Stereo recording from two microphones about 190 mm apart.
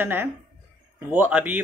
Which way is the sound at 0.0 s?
10° right (ahead or behind).